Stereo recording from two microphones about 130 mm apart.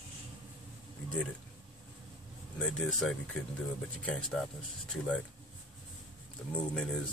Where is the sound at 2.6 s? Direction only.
5° left (ahead or behind).